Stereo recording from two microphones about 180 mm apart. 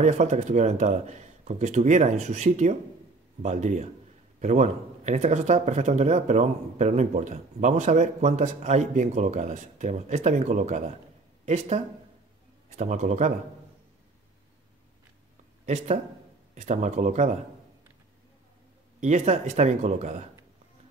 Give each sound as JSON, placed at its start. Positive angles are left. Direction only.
{"t": 0.0, "sound": "a man's voice", "side_deg": -40}
{"t": 15.6, "sound": "speech", "side_deg": -40}
{"t": 18.9, "sound": "speech", "side_deg": -40}